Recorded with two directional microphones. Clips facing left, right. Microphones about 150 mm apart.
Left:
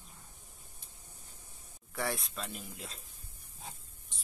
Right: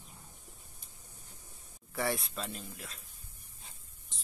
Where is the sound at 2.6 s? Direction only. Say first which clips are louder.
Left 1 dB; 25° left (ahead or behind).